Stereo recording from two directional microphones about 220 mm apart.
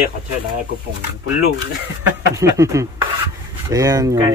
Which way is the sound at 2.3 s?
15° right (ahead or behind).